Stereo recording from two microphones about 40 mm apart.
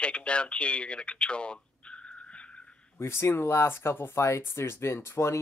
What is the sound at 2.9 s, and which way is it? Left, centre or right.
Speech, left.